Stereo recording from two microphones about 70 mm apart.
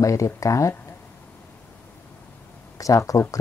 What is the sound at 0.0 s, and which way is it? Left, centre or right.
Speech, left.